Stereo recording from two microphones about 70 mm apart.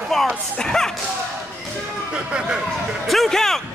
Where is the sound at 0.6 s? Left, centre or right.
Centre.